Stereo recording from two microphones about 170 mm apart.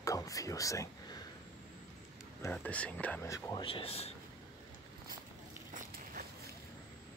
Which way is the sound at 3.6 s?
35° left (ahead or behind).